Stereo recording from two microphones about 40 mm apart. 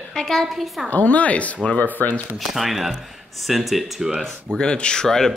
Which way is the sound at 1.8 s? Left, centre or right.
Left.